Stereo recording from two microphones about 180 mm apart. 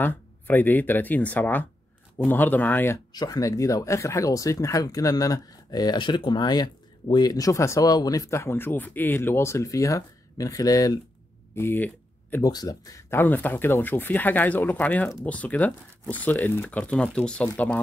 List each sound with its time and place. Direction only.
0.0 s speech: 10° left (ahead or behind)
11.5 s a sound: 10° left (ahead or behind)
12.4 s speech: 20° left (ahead or behind)